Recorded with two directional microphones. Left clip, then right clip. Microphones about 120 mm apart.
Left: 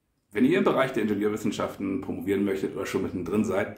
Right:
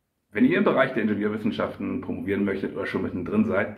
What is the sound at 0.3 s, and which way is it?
Speech, 30° left (ahead or behind).